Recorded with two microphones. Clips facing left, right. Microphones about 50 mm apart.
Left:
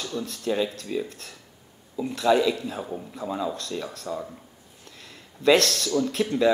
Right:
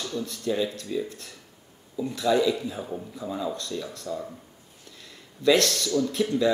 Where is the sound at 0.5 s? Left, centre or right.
Left.